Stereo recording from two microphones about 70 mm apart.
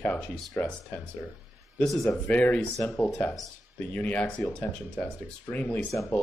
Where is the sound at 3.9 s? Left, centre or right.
Left.